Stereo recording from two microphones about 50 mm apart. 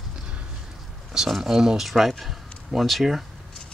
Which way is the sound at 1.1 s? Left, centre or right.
Centre.